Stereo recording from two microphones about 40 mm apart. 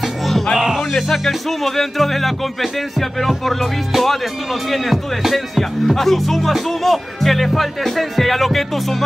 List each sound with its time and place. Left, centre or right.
0.0 s music: centre
0.9 s speech: centre